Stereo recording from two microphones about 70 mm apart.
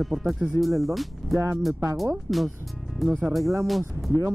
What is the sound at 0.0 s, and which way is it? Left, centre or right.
Speech, centre.